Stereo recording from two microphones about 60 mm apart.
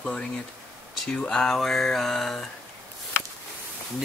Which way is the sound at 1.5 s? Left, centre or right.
Centre.